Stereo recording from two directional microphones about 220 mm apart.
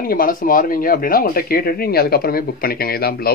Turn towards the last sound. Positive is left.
turn(degrees=45)  # may be behind; listen again after turning